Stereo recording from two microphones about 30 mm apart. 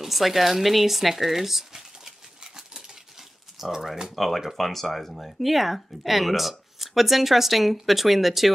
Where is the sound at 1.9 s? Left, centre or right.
Centre.